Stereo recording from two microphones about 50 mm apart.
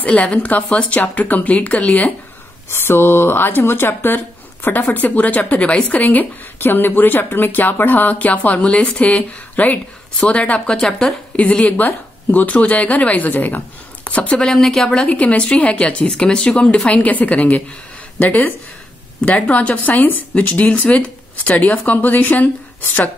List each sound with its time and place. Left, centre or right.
0.0 s speech: left
2.7 s speech: left
8.5 s speech: left
10.8 s speech: centre
11.3 s speech: left
14.4 s speech: centre
15.0 s speech: left